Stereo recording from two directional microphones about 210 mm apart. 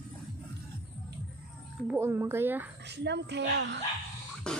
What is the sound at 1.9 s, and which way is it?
Speech, 10° right (ahead or behind).